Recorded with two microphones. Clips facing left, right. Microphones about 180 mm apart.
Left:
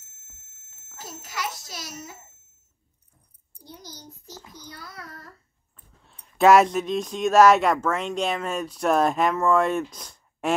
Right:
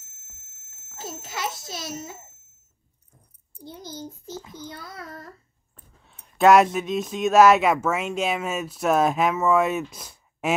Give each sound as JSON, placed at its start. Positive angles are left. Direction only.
{"t": 0.9, "sound": "a child's voice", "side_deg": -25}
{"t": 3.6, "sound": "a child's voice", "side_deg": -25}
{"t": 4.3, "sound": "speech", "side_deg": 0}
{"t": 6.0, "sound": "speech", "side_deg": 0}